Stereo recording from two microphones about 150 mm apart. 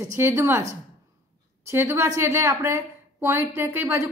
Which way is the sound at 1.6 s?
15° right (ahead or behind).